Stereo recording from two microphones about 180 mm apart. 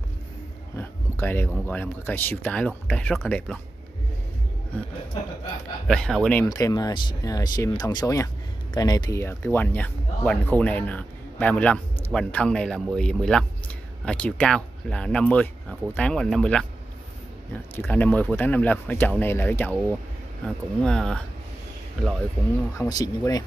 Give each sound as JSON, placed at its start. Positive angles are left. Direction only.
{"t": 0.7, "sound": "speech", "side_deg": 10}
{"t": 5.9, "sound": "a man's voice", "side_deg": 5}
{"t": 6.5, "sound": "a man's voice", "side_deg": 20}
{"t": 17.7, "sound": "a man's voice", "side_deg": 10}
{"t": 22.8, "sound": "speech", "side_deg": 20}